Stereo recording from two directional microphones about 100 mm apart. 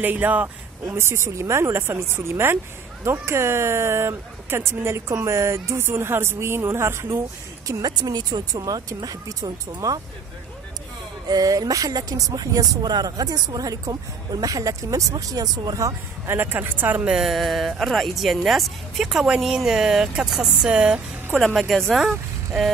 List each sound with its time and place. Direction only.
0.0 s speech: 20° right (ahead or behind); by 9.9 s 35° right (ahead or behind)
11.2 s speech: 40° right (ahead or behind)
16.3 s speech: 20° right (ahead or behind)
17.1 s speech: centre (ahead or behind)